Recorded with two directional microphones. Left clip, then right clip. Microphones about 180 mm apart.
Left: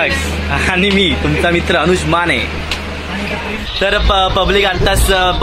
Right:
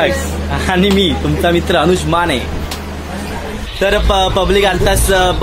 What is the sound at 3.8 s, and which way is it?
Speech, 20° right (ahead or behind).